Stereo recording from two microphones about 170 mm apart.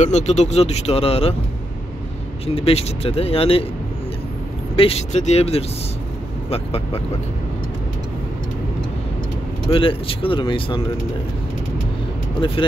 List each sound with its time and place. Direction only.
0.0 s speech: 40° left (ahead or behind)
2.4 s speech: 35° left (ahead or behind)
4.7 s speech: 40° left (ahead or behind)
9.7 s speech: 30° left (ahead or behind)
12.4 s speech: 30° left (ahead or behind)